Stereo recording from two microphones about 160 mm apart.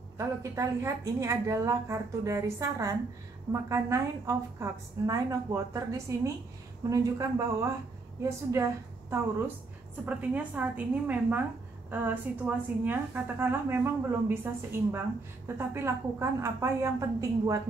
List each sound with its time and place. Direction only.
0.2 s a woman's voice: 20° right (ahead or behind)